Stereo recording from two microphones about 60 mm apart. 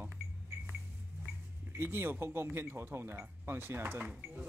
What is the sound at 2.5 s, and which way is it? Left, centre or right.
Speech, right.